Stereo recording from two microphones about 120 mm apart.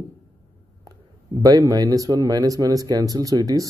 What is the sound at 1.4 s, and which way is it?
Speech, 30° right (ahead or behind).